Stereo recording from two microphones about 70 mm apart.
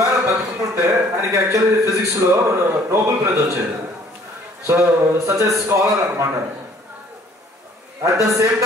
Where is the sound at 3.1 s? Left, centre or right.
Right.